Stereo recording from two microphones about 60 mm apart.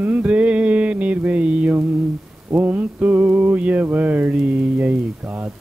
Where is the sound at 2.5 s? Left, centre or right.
Right.